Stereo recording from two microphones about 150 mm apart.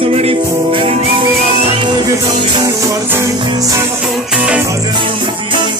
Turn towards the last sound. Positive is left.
turn(degrees=-10)  # may be behind; listen again after turning